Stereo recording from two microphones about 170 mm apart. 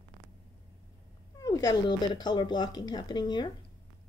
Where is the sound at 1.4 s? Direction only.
20° left (ahead or behind).